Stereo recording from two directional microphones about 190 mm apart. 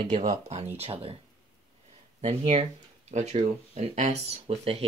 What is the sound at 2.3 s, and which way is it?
Speech, 35° right (ahead or behind).